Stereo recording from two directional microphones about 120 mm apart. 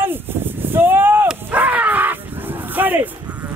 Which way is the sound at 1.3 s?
15° right (ahead or behind).